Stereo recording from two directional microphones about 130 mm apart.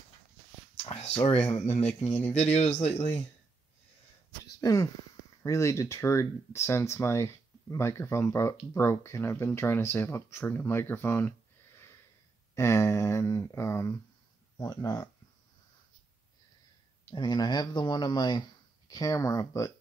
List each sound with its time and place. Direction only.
0.8 s speech: 55° left (ahead or behind)
4.6 s speech: 30° left (ahead or behind)
17.1 s speech: 35° left (ahead or behind)